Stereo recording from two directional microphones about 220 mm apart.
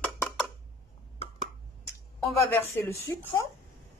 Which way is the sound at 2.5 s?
10° left (ahead or behind).